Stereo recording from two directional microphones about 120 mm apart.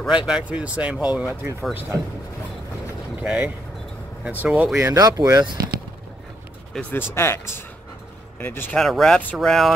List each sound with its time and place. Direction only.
0.3 s speech: 10° right (ahead or behind)
1.3 s speech: 20° right (ahead or behind)
3.2 s speech: 10° right (ahead or behind)
4.7 s speech: 30° right (ahead or behind)
6.7 s speech: 15° left (ahead or behind)
8.7 s speech: 5° left (ahead or behind)